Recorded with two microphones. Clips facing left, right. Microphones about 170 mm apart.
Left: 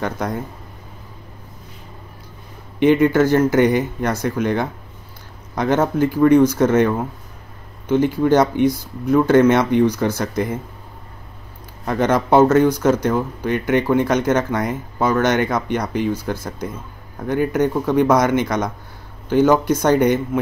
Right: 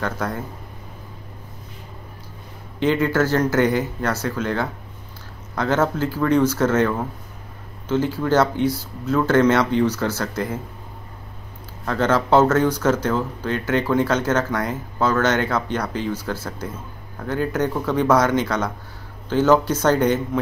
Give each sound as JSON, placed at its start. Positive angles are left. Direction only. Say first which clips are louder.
{"t": 0.0, "sound": "speech", "louder": "left 2 dB", "side_deg": 15}
{"t": 2.8, "sound": "speech", "louder": "left 5 dB", "side_deg": 15}
{"t": 11.8, "sound": "speech", "louder": "left 2 dB", "side_deg": 15}